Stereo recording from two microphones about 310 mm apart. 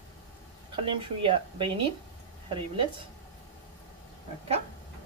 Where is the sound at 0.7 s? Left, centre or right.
Centre.